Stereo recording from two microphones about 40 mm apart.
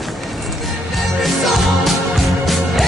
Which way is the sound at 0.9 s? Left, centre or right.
Centre.